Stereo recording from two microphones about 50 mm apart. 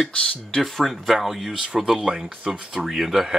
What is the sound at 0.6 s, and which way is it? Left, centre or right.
Speech, centre.